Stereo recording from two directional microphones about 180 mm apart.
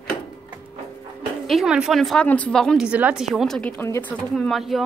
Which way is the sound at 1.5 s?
5° right (ahead or behind).